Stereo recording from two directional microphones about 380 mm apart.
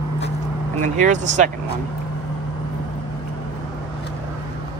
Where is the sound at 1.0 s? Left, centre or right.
Centre.